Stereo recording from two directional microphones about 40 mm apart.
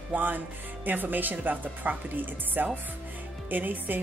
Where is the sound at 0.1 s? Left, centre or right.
Right.